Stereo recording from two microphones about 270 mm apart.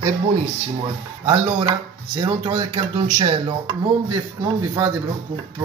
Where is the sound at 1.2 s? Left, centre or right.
Centre.